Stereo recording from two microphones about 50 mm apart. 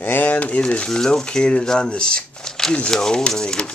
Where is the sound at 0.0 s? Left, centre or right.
Left.